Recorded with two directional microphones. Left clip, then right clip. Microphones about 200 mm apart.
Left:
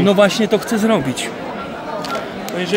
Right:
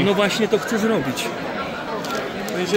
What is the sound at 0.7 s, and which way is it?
Speech, 40° left (ahead or behind).